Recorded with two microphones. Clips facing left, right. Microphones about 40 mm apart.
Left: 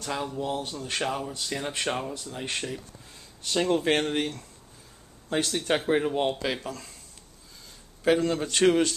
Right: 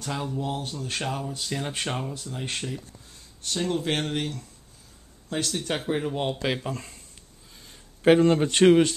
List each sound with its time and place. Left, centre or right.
0.0 s speech: centre
3.6 s speech: centre
6.4 s speech: centre
6.7 s speech: right
8.0 s speech: right